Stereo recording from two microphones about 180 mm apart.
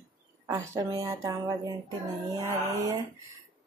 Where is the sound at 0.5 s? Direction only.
20° right (ahead or behind).